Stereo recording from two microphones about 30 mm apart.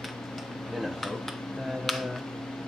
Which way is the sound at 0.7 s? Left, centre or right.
Centre.